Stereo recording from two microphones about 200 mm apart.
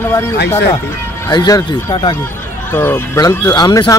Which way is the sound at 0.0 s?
10° left (ahead or behind).